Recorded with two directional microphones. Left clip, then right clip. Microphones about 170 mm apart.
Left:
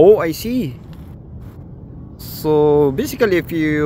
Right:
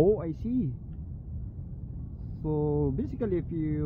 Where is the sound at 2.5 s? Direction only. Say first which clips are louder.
Left 17 dB; 15° left (ahead or behind).